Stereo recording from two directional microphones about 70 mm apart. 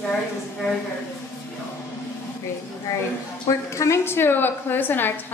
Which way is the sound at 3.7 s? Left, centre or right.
Left.